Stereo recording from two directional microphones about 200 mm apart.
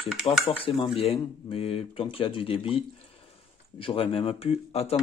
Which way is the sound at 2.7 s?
30° left (ahead or behind).